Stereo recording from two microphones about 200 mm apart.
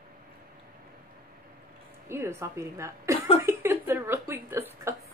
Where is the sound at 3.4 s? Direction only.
10° right (ahead or behind).